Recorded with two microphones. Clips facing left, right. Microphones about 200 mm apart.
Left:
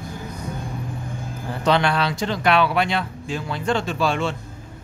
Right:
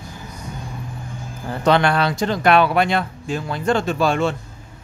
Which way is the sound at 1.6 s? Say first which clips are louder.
Right 3 dB; 50° right (ahead or behind).